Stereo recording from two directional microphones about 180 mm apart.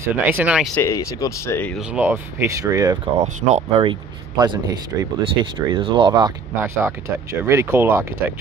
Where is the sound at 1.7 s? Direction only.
5° right (ahead or behind).